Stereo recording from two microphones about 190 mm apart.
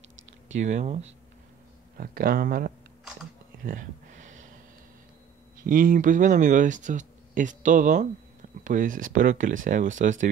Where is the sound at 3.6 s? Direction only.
40° right (ahead or behind).